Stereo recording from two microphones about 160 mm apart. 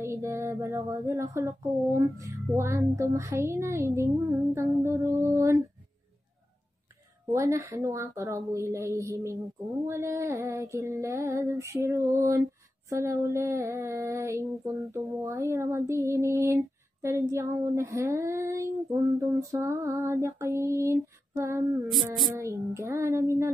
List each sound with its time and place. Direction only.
0.0 s a sound: 15° right (ahead or behind)
2.0 s speech: 20° right (ahead or behind)
7.3 s female singing: 20° right (ahead or behind)
17.0 s speech: 20° right (ahead or behind)
22.2 s female singing: 20° right (ahead or behind)